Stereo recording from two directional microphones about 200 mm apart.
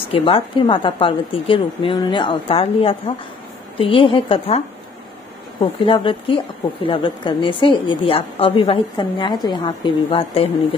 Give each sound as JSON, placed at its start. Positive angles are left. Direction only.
{"t": 0.1, "sound": "a woman's voice", "side_deg": 25}
{"t": 5.6, "sound": "a woman's voice", "side_deg": 25}